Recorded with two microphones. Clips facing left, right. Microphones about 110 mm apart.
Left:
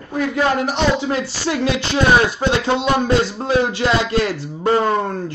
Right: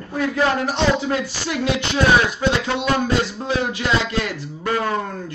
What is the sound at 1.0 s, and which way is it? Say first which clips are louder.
A man's voice: left 2 dB; 30° left (ahead or behind).